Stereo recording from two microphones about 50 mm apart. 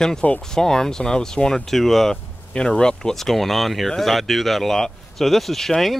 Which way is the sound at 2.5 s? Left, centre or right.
Centre.